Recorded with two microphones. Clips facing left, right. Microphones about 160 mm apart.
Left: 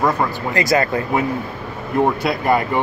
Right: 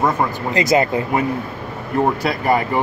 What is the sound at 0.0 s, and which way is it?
Speech, 20° right (ahead or behind).